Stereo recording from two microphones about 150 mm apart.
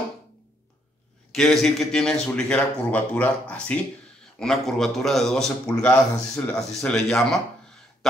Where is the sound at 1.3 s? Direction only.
Centre (ahead or behind).